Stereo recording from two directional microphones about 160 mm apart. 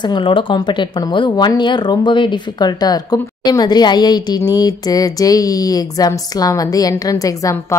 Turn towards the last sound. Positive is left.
turn(degrees=20)  # may be behind; listen again after turning